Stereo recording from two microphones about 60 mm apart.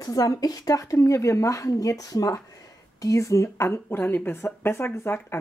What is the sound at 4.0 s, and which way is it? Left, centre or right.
Speech, left.